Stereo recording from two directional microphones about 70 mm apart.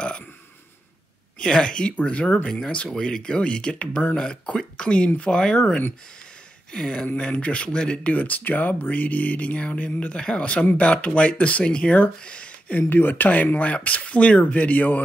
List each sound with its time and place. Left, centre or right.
1.4 s speech: centre